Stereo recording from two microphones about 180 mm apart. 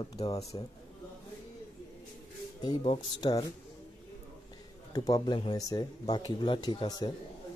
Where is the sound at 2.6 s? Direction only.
25° left (ahead or behind).